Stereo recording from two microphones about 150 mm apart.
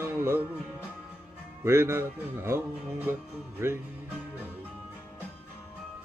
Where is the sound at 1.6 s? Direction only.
15° right (ahead or behind).